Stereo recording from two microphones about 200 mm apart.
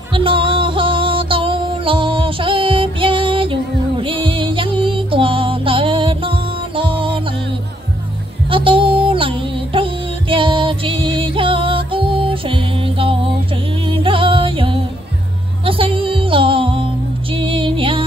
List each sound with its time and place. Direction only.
0.1 s music: 25° right (ahead or behind)
8.5 s music: 25° right (ahead or behind)